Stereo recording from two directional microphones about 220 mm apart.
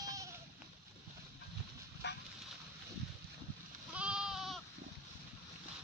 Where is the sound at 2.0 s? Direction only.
50° left (ahead or behind).